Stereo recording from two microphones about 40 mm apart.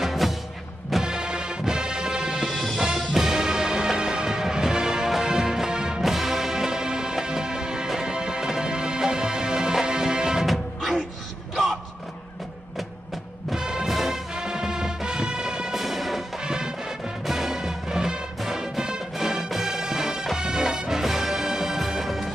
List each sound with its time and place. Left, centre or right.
0.0 s music: centre
1.0 s music: centre
6.0 s music: centre
10.4 s music: centre
13.6 s music: centre
14.3 s music: centre
15.7 s music: centre
16.3 s music: centre